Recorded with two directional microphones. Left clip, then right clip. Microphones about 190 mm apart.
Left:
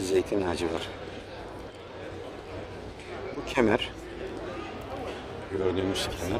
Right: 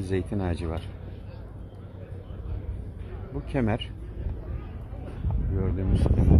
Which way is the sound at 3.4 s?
Centre (ahead or behind).